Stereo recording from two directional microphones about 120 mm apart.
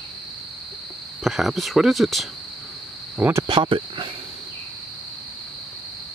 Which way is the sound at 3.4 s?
45° right (ahead or behind).